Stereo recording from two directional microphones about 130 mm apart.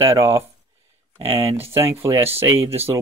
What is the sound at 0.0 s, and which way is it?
Speech, 20° right (ahead or behind).